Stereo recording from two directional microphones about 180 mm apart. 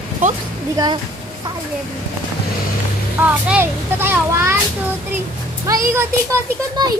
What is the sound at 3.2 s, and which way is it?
A child's voice, 10° right (ahead or behind).